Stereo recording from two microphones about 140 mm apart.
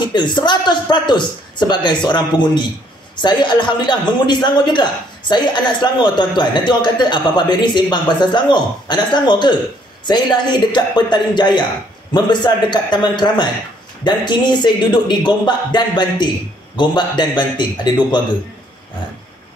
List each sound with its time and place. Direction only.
0.1 s a man's voice: 30° left (ahead or behind)